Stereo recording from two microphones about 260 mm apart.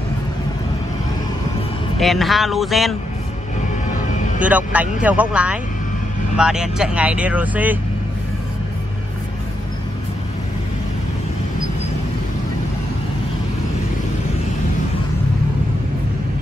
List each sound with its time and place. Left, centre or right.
2.0 s speech: centre
4.4 s speech: centre